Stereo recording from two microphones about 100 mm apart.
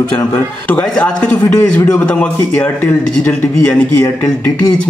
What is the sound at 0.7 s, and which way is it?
A man's voice, 15° left (ahead or behind).